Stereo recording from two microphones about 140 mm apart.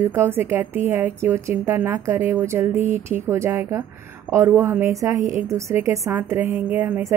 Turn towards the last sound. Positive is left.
turn(degrees=-15)  # may be behind; listen again after turning